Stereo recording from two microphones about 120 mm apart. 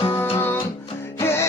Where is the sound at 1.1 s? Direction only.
20° left (ahead or behind).